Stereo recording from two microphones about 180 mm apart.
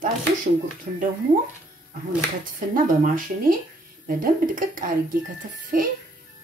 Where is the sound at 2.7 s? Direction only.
50° right (ahead or behind).